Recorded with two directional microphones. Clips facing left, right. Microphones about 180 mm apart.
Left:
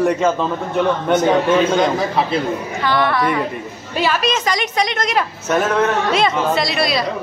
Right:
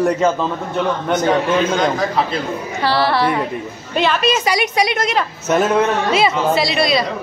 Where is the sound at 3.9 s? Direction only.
5° left (ahead or behind).